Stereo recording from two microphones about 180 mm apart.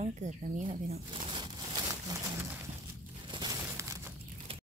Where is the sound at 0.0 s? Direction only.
40° right (ahead or behind).